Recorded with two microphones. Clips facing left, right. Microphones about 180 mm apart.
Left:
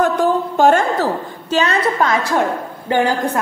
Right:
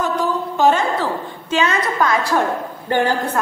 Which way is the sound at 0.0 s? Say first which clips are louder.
Left 5 dB; 50° left (ahead or behind).